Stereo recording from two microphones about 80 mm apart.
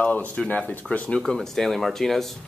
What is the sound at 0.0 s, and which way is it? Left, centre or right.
Speech, centre.